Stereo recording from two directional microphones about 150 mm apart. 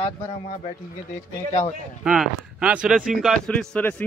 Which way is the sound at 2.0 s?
5° right (ahead or behind).